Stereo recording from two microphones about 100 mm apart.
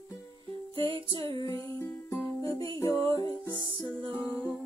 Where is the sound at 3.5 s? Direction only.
55° right (ahead or behind).